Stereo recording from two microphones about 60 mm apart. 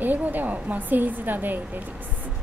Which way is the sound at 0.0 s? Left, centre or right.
Right.